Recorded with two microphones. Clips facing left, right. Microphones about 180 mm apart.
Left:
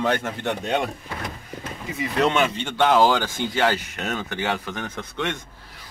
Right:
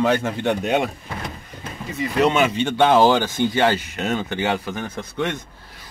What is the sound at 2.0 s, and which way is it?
Speech, 5° right (ahead or behind).